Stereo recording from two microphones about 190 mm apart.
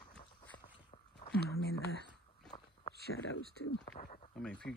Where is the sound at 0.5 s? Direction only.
35° left (ahead or behind).